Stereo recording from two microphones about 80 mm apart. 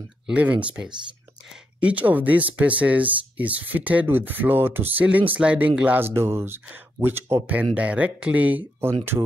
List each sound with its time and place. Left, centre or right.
0.3 s speech: centre
5.9 s speech: right